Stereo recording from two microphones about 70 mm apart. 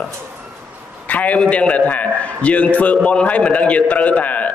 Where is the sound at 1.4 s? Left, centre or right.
Centre.